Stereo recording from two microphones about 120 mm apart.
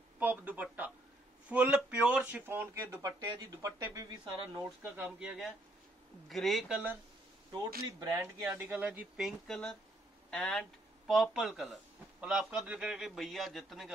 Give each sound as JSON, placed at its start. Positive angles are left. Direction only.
{"t": 0.2, "sound": "speech", "side_deg": -15}
{"t": 4.9, "sound": "a man's voice", "side_deg": -10}
{"t": 8.0, "sound": "speech", "side_deg": -30}
{"t": 8.5, "sound": "speech", "side_deg": -15}
{"t": 9.5, "sound": "a man's voice", "side_deg": 5}